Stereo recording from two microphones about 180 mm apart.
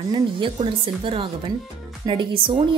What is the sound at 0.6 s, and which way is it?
Speech, 30° right (ahead or behind).